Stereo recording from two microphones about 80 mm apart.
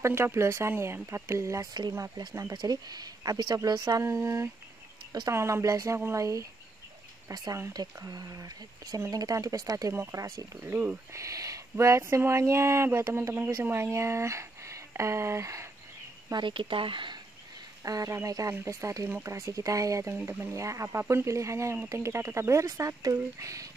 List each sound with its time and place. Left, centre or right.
0.0 s speech: right
1.7 s speech: right
4.0 s speech: right
7.2 s speech: right
10.6 s speech: right
11.1 s speech: right
16.3 s speech: right
17.8 s speech: right